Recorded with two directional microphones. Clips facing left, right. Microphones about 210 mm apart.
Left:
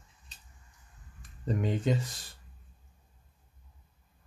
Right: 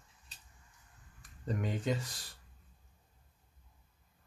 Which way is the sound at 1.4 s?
25° left (ahead or behind).